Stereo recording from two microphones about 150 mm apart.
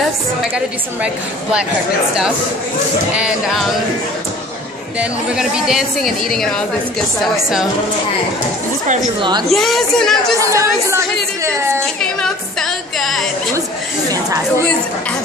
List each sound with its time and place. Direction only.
1.0 s a woman's voice: 5° right (ahead or behind)
3.2 s a woman's voice: 5° right (ahead or behind)
4.9 s a woman's voice: 5° right (ahead or behind)
9.5 s a woman's voice: centre (ahead or behind)
10.4 s a woman's voice: 20° right (ahead or behind)
11.8 s music: 5° left (ahead or behind)